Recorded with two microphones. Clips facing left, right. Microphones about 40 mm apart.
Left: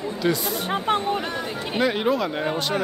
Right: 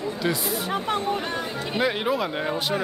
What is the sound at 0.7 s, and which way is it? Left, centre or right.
Speech, left.